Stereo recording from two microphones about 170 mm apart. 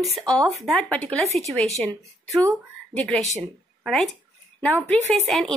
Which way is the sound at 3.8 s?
Centre (ahead or behind).